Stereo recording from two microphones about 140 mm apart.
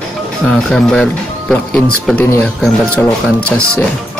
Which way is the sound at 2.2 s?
15° left (ahead or behind).